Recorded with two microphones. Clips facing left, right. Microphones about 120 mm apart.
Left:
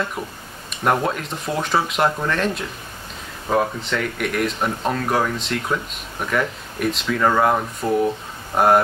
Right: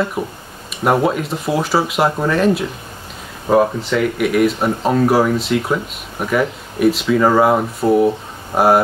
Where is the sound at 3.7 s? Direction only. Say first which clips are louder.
Right 7 dB; 5° right (ahead or behind).